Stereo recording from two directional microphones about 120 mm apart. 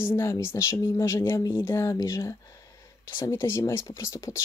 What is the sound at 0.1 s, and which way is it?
Speech, 20° left (ahead or behind).